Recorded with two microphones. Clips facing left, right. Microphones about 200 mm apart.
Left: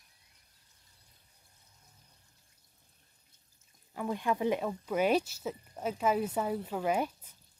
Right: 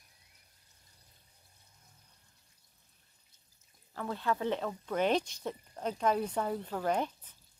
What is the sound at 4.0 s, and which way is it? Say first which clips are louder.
Speech: left 2 dB; 15° left (ahead or behind).